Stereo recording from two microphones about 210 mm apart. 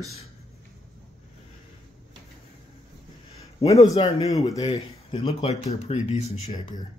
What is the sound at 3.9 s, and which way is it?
Speech, 30° left (ahead or behind).